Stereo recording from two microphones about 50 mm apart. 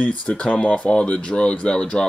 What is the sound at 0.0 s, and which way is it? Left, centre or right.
Speech, left.